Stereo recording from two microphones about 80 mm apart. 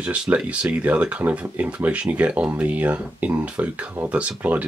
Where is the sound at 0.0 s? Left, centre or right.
Centre.